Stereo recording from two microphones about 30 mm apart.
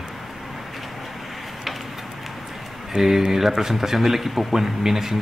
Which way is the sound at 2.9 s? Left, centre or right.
Centre.